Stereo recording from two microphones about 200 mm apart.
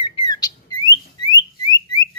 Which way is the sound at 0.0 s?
20° left (ahead or behind).